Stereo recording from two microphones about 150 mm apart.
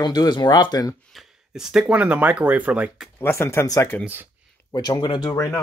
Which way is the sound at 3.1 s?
15° left (ahead or behind).